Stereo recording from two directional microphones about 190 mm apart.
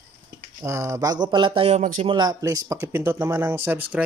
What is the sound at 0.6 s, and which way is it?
Speech, 15° right (ahead or behind).